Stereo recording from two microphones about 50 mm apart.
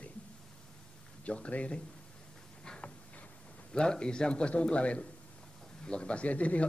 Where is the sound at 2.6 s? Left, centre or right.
Centre.